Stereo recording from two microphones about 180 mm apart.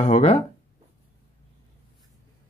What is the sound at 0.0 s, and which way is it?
Speech, 35° left (ahead or behind).